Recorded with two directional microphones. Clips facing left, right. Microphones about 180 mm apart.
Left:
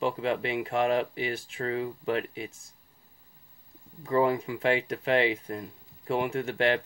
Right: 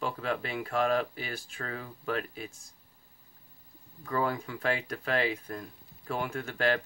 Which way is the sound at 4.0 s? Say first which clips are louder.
Left 6 dB; 20° left (ahead or behind).